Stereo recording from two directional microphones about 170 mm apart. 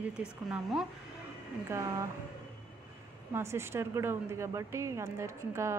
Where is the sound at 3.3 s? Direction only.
15° right (ahead or behind).